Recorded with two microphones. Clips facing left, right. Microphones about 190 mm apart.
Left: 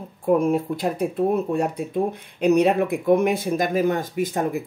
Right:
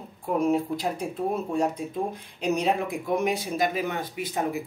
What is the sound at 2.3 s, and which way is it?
Speech, 60° left (ahead or behind).